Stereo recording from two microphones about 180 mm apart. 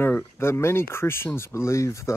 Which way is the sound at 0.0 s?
10° left (ahead or behind).